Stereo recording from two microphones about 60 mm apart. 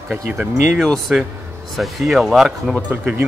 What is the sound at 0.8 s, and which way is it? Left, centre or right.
Speech, centre.